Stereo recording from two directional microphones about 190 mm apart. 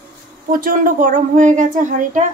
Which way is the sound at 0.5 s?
45° right (ahead or behind).